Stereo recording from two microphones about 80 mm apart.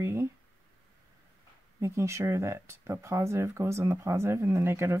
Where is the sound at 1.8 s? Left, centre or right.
Right.